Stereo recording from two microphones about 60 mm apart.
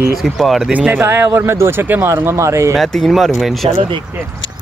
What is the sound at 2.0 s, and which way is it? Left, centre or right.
Speech, right.